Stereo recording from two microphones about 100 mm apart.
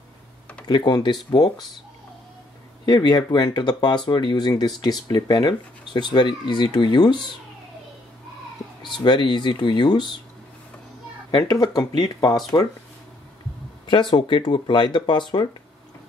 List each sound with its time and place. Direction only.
0.7 s speech: 45° left (ahead or behind)
2.8 s speech: 45° left (ahead or behind)
8.8 s speech: 50° left (ahead or behind)
11.3 s speech: 40° left (ahead or behind)
13.8 s speech: 55° left (ahead or behind)